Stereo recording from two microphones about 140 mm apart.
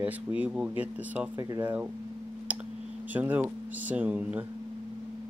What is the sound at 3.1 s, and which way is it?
Speech, 10° right (ahead or behind).